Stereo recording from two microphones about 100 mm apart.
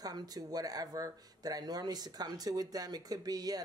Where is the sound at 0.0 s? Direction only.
40° right (ahead or behind).